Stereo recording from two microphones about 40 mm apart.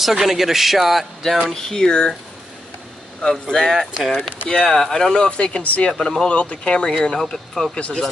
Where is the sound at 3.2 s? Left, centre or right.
Left.